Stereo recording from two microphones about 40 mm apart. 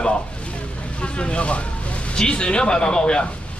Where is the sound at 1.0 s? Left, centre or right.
Left.